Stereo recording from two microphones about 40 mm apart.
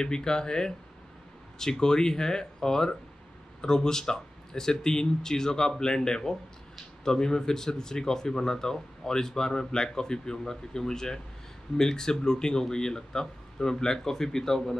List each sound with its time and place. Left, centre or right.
0.0 s speech: centre